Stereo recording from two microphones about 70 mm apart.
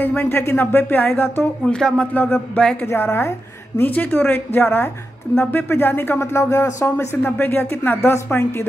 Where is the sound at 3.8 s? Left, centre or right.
Left.